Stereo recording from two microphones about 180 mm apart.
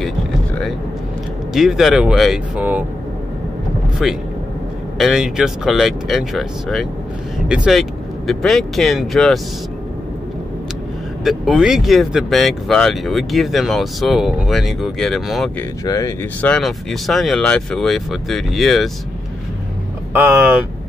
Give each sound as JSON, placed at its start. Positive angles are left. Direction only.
{"t": 1.5, "sound": "speech", "side_deg": 0}
{"t": 4.0, "sound": "speech", "side_deg": 0}
{"t": 11.2, "sound": "speech", "side_deg": 0}
{"t": 15.8, "sound": "speech", "side_deg": 20}
{"t": 16.3, "sound": "speech", "side_deg": 5}
{"t": 20.1, "sound": "speech", "side_deg": -10}